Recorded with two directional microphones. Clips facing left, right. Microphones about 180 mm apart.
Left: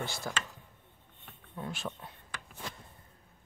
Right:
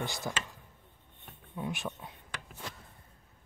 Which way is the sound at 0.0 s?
20° right (ahead or behind).